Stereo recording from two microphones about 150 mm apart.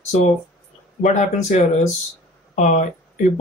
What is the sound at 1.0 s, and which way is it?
Speech, 55° left (ahead or behind).